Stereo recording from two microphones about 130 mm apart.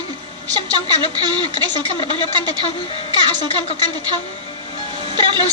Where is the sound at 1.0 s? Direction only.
35° right (ahead or behind).